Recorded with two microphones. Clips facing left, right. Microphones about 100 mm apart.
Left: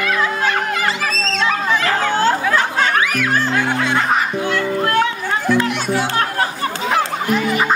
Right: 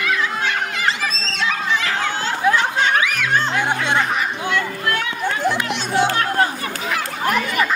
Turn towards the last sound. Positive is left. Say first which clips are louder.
# even
turn(degrees=-20)  # may be behind; listen again after turning